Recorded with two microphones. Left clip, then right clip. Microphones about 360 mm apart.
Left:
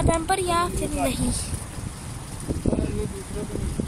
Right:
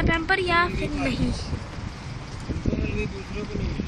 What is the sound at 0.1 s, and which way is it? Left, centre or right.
Speech, centre.